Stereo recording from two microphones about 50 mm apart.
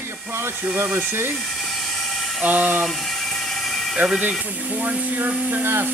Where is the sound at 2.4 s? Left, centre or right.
Right.